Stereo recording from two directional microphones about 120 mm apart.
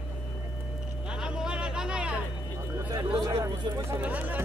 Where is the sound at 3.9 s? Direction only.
15° right (ahead or behind).